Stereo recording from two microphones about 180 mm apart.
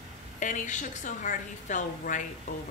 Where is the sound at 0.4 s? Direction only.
45° left (ahead or behind).